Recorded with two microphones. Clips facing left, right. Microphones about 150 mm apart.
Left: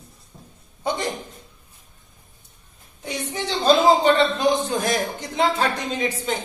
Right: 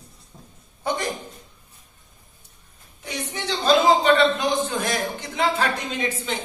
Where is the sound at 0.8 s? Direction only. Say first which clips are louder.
Left 1 dB; 15° left (ahead or behind).